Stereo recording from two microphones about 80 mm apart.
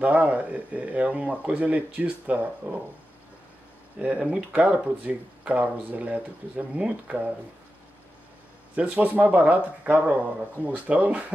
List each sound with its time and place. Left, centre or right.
0.0 s speech: centre
4.2 s speech: centre
8.7 s speech: centre